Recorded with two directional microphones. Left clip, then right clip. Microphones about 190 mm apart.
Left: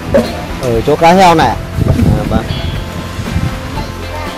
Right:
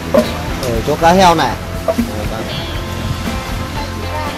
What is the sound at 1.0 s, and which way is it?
Speech, 55° left (ahead or behind).